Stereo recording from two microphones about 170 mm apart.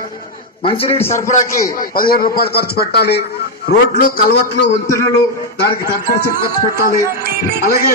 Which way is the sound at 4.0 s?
55° left (ahead or behind).